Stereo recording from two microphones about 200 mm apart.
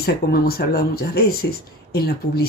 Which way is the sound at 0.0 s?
50° left (ahead or behind).